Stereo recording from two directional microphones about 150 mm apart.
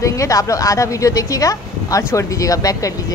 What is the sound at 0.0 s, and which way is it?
A woman's voice, 20° left (ahead or behind).